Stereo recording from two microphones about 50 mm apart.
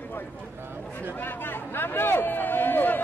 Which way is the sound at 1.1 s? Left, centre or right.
Left.